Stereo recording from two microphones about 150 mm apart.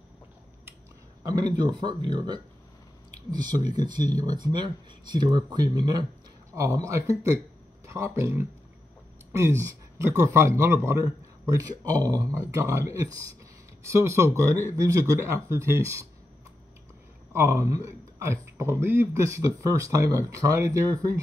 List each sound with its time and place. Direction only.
1.6 s a man's voice: 30° right (ahead or behind)
7.8 s a sound: 20° right (ahead or behind)
8.2 s a man's voice: 20° right (ahead or behind)
17.3 s a man's voice: 15° right (ahead or behind)